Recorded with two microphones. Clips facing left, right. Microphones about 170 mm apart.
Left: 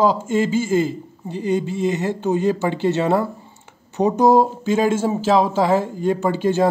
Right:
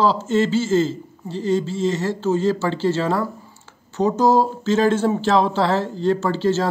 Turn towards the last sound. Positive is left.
turn(degrees=15)  # may be behind; listen again after turning